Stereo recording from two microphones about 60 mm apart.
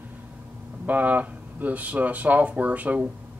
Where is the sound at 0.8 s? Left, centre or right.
Right.